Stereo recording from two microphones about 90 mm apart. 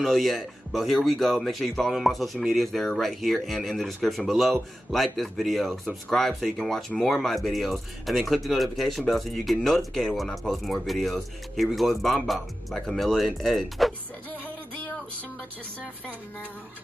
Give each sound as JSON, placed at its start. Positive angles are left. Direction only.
{"t": 0.0, "sound": "speech", "side_deg": 0}
{"t": 14.3, "sound": "music", "side_deg": 20}